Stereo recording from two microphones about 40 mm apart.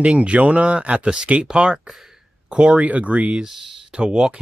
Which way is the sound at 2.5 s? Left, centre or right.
Right.